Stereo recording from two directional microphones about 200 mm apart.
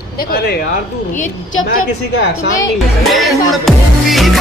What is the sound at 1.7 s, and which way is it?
Speech, 45° left (ahead or behind).